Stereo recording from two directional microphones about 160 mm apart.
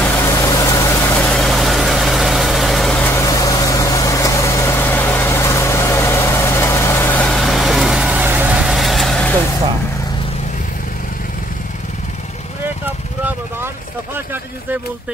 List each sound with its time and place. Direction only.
0.0 s vehicle: 15° left (ahead or behind)
1.2 s vehicle: centre (ahead or behind)